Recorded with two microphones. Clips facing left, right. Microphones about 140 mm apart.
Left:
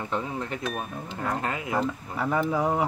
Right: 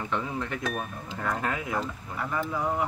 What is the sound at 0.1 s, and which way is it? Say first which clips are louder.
Speech: left 1 dB; 30° left (ahead or behind).